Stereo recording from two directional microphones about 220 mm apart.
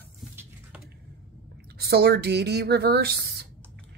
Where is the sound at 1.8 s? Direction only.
45° right (ahead or behind).